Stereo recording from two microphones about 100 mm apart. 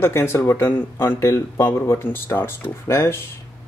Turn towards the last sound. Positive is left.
turn(degrees=25)  # may be behind; listen again after turning